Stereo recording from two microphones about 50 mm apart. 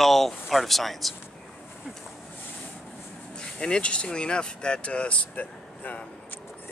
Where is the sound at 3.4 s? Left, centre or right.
Centre; by 6.1 s left.